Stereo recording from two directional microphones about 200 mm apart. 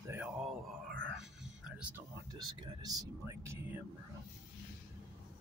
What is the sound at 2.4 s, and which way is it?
Speech, 20° right (ahead or behind).